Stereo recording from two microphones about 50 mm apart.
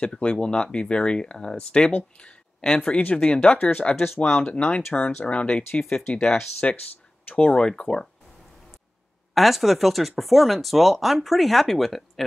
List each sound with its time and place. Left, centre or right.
0.0 s speech: left
3.9 s speech: left
4.2 s speech: left
9.3 s speech: centre